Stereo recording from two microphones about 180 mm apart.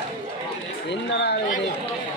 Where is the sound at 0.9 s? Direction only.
75° left (ahead or behind).